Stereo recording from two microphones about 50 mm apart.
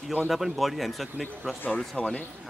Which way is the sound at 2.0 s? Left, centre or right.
Left.